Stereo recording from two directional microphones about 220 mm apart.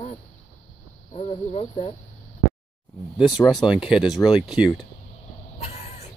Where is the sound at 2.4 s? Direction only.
45° left (ahead or behind).